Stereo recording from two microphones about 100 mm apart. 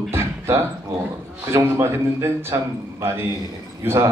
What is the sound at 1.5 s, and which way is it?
Speech, 30° right (ahead or behind).